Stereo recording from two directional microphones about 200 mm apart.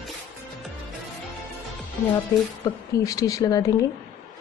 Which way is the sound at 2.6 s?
15° left (ahead or behind).